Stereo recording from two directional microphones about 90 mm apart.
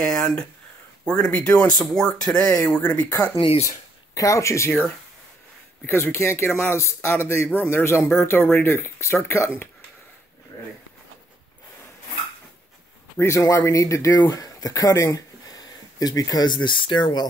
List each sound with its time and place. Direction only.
0.0 s speech: 5° left (ahead or behind)
3.6 s speech: 35° left (ahead or behind)
13.2 s speech: 35° left (ahead or behind); by 17.3 s 55° left (ahead or behind)